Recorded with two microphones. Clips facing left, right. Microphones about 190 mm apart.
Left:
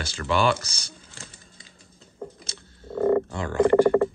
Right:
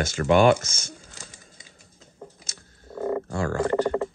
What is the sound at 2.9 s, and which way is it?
Frog, 10° right (ahead or behind).